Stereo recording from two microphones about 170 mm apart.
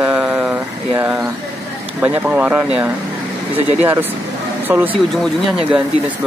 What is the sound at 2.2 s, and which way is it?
Speech, 10° right (ahead or behind).